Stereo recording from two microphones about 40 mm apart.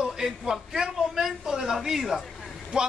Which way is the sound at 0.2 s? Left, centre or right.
Centre.